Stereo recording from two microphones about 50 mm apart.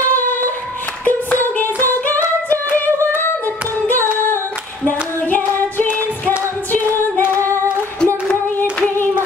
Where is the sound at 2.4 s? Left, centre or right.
Left.